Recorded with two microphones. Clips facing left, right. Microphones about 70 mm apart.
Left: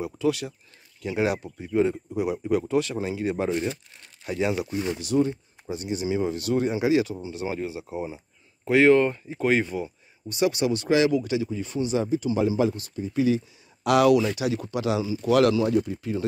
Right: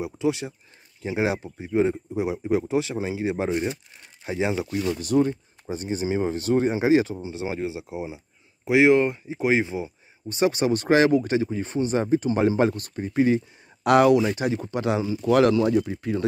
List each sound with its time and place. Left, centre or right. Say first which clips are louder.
0.0 s speech: even; right
4.9 s speech: right 2 dB; right; by 9.9 s centre
10.2 s speech: right 1 dB; right
14.0 s speech: right 1 dB; right
14.6 s speech: right 1 dB; right
15.5 s speech: right 2 dB; right